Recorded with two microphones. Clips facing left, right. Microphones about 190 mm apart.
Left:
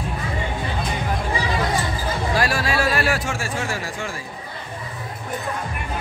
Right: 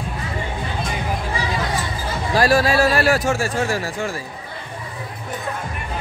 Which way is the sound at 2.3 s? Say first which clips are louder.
Right 8 dB; 40° right (ahead or behind).